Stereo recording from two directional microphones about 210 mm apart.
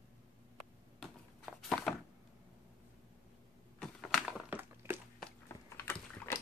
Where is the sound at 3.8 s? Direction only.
Centre (ahead or behind).